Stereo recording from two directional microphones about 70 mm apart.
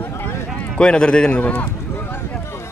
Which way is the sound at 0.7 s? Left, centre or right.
Centre.